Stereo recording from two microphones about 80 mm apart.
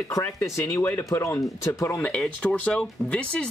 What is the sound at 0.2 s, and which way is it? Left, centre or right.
Speech, left.